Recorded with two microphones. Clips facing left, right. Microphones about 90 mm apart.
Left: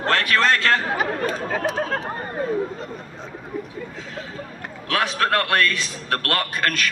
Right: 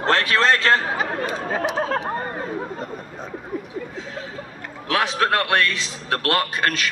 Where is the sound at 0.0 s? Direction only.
25° right (ahead or behind).